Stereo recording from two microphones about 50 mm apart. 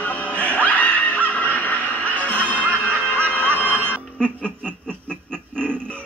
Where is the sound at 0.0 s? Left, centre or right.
Left.